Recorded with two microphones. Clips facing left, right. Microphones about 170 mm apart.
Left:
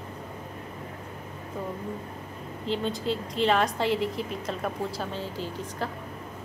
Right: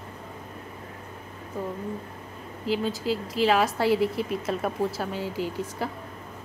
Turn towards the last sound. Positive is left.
turn(degrees=-10)  # may be behind; listen again after turning